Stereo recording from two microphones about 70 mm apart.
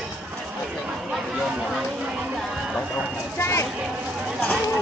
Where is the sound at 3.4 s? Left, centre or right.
Left.